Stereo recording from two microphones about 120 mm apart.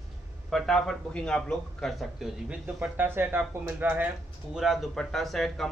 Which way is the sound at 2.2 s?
10° right (ahead or behind).